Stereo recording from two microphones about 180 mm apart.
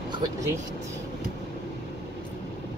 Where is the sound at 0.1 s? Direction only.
20° right (ahead or behind).